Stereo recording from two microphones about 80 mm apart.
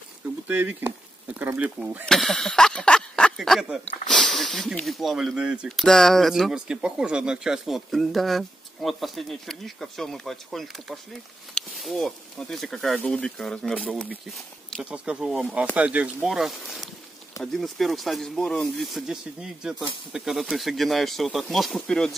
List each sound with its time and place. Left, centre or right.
0.5 s speech: right
2.0 s a sound: centre
3.3 s speech: centre
3.8 s speech: centre
5.7 s speech: centre
6.5 s speech: centre
14.9 s speech: centre
15.7 s speech: centre
16.3 s speech: centre